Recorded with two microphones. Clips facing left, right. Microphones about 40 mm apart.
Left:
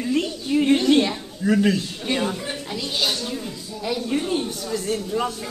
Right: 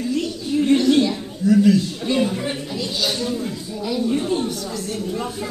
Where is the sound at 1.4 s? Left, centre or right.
Left.